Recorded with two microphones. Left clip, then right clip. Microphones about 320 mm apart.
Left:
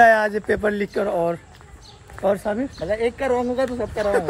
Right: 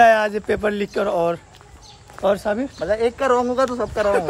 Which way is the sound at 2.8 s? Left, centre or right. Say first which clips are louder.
Right 3 dB; centre.